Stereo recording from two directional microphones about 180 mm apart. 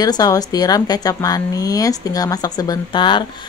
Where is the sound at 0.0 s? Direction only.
20° left (ahead or behind).